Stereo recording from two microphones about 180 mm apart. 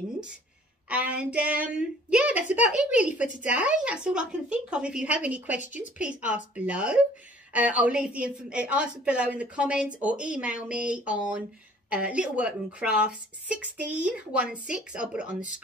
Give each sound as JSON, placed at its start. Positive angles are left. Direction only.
{"t": 0.8, "sound": "a woman's voice", "side_deg": -5}